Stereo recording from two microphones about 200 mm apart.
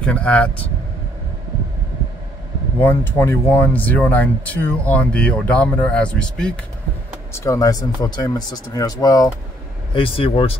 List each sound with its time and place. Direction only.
0.0 s speech: 5° left (ahead or behind)
2.8 s speech: 10° left (ahead or behind)
7.3 s speech: 15° left (ahead or behind)